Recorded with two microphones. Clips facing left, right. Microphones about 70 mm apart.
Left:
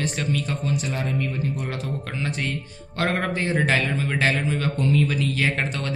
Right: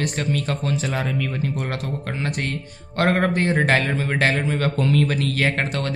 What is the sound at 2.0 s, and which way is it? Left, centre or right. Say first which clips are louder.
Speech: right 2 dB; right.